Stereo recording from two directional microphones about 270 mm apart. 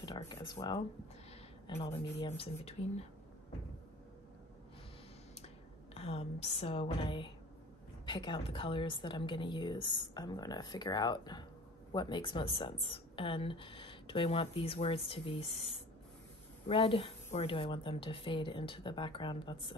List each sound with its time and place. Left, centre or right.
0.0 s a woman's voice: centre
5.9 s a woman's voice: left